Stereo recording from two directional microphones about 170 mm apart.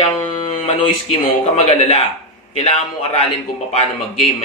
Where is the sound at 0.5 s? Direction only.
40° left (ahead or behind).